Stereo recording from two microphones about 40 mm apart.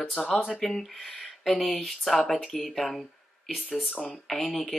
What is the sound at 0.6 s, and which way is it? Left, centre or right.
Speech, centre.